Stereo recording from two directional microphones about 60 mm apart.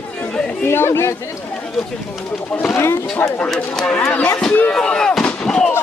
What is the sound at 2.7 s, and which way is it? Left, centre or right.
Speech, left.